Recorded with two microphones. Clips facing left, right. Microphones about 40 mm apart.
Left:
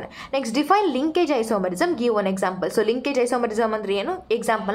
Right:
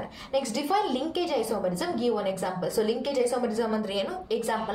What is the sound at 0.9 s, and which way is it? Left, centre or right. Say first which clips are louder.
A woman's voice: left 7 dB; left.